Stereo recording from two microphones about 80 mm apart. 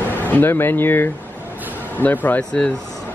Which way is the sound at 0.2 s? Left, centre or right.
Left.